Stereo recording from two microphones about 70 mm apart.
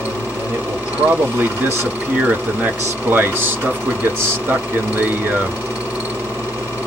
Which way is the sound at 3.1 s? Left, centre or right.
Right.